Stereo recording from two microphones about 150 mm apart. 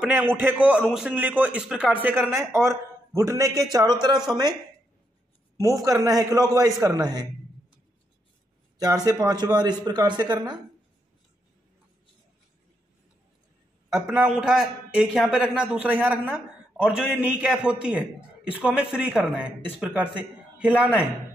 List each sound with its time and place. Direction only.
0.0 s a man's voice: 10° right (ahead or behind); by 4.2 s 30° right (ahead or behind)
5.6 s a man's voice: 20° right (ahead or behind)
8.7 s a man's voice: 25° right (ahead or behind)
14.0 s a man's voice: 5° right (ahead or behind)